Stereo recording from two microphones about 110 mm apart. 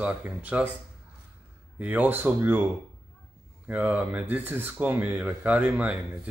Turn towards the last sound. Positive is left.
turn(degrees=-15)  # may be behind; listen again after turning